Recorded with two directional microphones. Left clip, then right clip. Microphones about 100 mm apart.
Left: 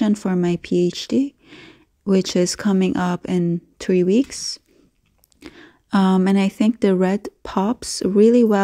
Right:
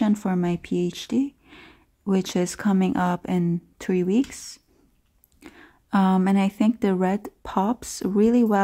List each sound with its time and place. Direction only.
0.0 s speech: 30° left (ahead or behind)